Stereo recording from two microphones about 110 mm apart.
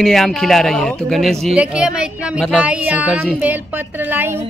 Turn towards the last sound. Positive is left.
turn(degrees=-20)  # may be behind; listen again after turning